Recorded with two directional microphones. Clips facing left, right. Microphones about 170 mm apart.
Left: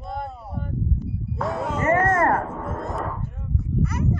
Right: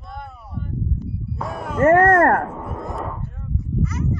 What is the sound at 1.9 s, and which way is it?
Speech, 65° right (ahead or behind).